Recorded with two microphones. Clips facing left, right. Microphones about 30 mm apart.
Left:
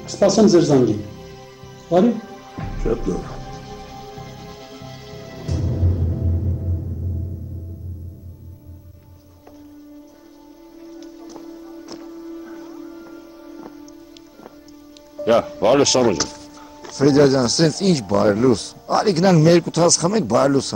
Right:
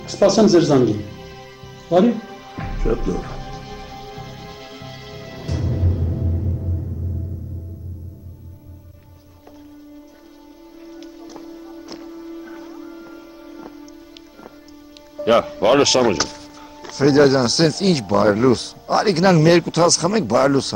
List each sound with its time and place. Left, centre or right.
0.0 s music: right; by 6.8 s centre
10.9 s music: centre
15.1 s speech: right